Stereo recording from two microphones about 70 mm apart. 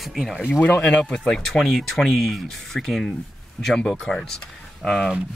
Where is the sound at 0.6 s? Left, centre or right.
Left; by 3.9 s centre.